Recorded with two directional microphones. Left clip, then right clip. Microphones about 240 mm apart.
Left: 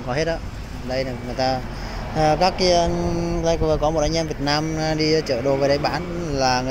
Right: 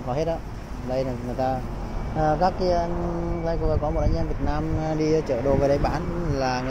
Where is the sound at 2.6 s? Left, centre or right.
Left.